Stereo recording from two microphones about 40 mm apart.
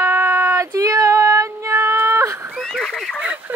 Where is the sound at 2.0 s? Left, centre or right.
Right.